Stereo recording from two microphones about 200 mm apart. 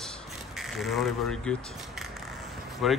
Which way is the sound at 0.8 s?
5° left (ahead or behind).